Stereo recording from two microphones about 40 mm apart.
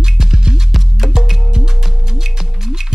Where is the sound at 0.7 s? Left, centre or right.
Centre.